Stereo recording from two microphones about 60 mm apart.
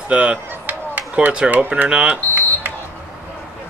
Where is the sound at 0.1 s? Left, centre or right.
Centre.